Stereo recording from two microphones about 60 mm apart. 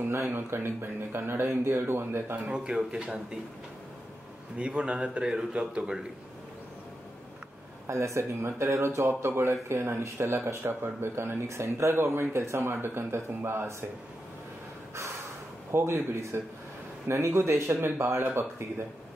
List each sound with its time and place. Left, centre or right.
0.0 s speech: right
2.5 s a man's voice: centre
4.6 s a man's voice: centre
7.8 s speech: right
15.7 s speech: right